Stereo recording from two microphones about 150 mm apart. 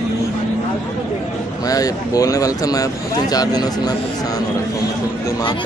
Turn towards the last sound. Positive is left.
turn(degrees=25)  # may be behind; listen again after turning